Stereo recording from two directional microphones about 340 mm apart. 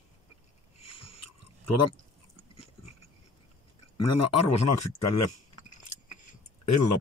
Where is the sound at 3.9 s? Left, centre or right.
Left.